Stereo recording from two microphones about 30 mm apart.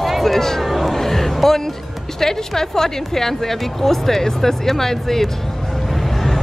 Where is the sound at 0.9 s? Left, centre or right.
Centre.